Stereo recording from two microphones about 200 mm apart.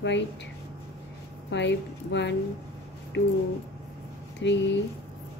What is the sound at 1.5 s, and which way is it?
Speech, 65° left (ahead or behind).